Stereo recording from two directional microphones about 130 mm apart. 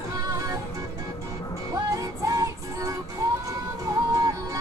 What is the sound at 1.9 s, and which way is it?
Music, 25° right (ahead or behind).